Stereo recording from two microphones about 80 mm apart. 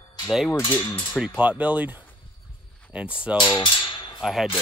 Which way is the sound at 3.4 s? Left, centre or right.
Left.